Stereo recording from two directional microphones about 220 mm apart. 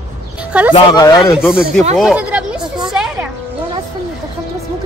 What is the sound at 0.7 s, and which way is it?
Speech, 20° left (ahead or behind).